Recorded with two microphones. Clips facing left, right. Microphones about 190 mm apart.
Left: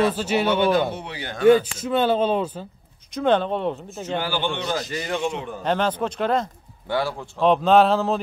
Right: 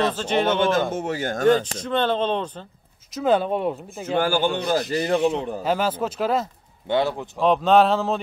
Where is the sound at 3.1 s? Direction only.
5° right (ahead or behind).